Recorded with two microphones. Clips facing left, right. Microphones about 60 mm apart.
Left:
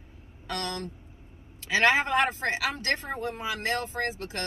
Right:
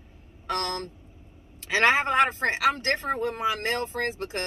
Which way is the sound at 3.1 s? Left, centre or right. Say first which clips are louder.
Right 5 dB; right.